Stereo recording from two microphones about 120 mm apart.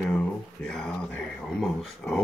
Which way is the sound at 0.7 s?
5° left (ahead or behind).